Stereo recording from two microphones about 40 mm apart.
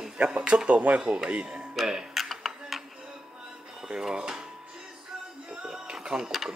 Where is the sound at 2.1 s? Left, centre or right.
Centre.